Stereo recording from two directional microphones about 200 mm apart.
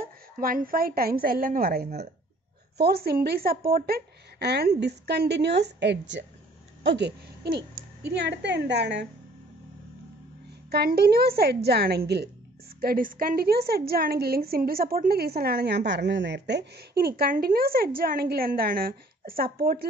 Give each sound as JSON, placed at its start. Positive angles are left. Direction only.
{"t": 0.0, "sound": "a woman's voice", "side_deg": -45}
{"t": 10.7, "sound": "a woman's voice", "side_deg": -55}